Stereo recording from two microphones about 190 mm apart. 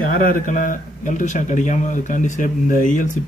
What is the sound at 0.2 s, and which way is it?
Speech, 45° left (ahead or behind).